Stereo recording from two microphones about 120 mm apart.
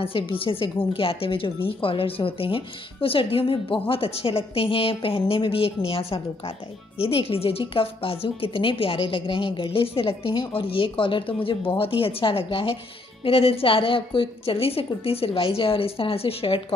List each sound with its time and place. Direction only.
0.0 s speech: 50° left (ahead or behind)